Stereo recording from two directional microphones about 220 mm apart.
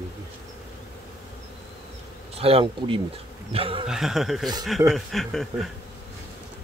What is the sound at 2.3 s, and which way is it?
Speech, 25° right (ahead or behind).